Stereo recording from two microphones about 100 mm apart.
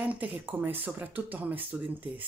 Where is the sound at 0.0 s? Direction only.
15° right (ahead or behind).